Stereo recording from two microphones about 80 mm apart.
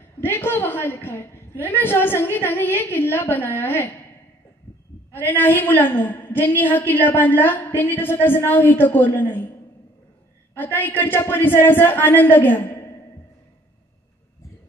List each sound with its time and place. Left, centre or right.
0.2 s a woman's voice: left
5.1 s a woman's voice: left
10.5 s a woman's voice: left